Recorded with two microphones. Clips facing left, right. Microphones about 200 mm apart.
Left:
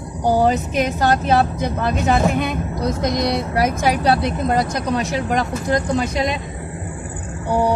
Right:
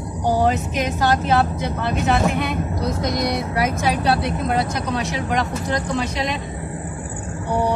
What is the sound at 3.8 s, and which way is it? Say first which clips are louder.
Speech: left 2 dB; 40° left (ahead or behind).